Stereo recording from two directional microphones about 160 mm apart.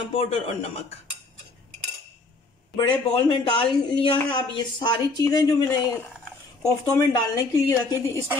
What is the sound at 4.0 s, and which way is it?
Speech, 30° left (ahead or behind).